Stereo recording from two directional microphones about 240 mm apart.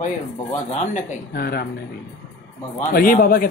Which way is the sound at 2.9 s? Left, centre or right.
Left.